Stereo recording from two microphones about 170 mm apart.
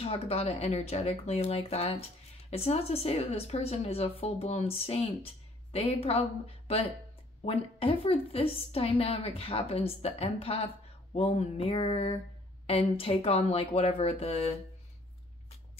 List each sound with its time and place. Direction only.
0.0 s speech: 35° left (ahead or behind)